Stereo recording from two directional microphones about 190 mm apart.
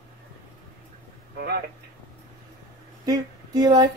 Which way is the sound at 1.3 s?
55° right (ahead or behind).